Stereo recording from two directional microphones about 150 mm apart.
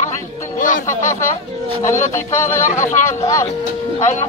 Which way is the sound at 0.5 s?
60° left (ahead or behind).